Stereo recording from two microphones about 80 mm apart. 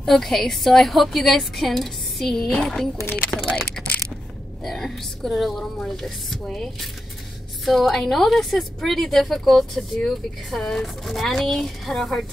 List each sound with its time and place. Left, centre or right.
0.0 s a woman's voice: centre
3.3 s speech: centre
3.8 s a sound: centre
4.6 s a woman's voice: centre